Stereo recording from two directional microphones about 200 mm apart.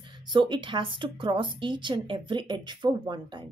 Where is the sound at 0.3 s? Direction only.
25° right (ahead or behind).